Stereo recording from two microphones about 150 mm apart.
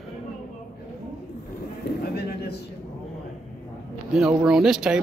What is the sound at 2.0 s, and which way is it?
Speech, 90° left.